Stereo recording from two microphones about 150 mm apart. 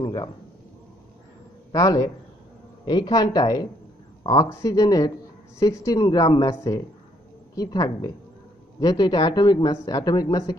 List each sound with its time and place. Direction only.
0.0 s speech: 30° left (ahead or behind)
1.7 s speech: 25° left (ahead or behind)